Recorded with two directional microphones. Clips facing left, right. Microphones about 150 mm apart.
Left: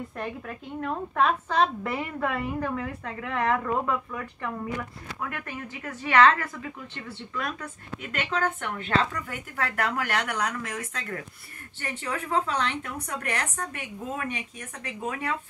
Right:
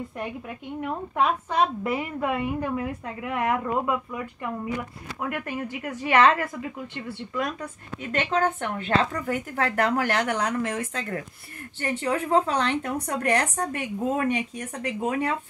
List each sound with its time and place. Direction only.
0.2 s a woman's voice: 15° right (ahead or behind)
8.0 s a woman's voice: 25° right (ahead or behind)
12.4 s a woman's voice: 40° right (ahead or behind)